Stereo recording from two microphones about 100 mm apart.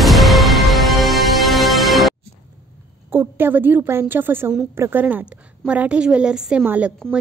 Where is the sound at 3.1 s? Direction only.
20° right (ahead or behind).